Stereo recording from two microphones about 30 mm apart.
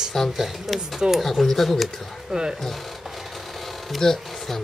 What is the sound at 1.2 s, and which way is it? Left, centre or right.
Speech, centre.